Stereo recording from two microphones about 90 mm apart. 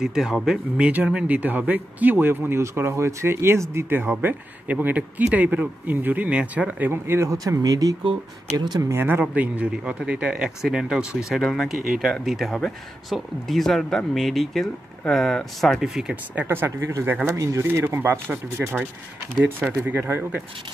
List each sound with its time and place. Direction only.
0.0 s speech: 5° right (ahead or behind)
6.9 s speech: 30° right (ahead or behind)
8.5 s speech: 55° right (ahead or behind)
8.8 s speech: 25° right (ahead or behind); by 16.4 s 10° right (ahead or behind)
16.4 s speech: 25° right (ahead or behind)